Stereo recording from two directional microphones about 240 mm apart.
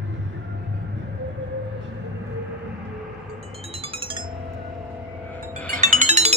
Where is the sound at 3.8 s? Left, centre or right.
Right.